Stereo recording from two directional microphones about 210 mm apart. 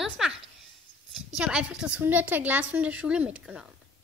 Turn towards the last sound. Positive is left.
turn(degrees=-5)  # may be behind; listen again after turning